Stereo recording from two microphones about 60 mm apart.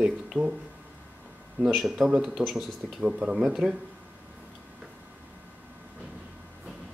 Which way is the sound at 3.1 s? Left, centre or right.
Centre.